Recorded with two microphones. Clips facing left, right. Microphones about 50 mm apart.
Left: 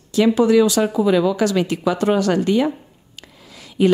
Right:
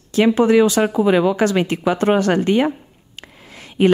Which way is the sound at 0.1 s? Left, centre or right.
Right.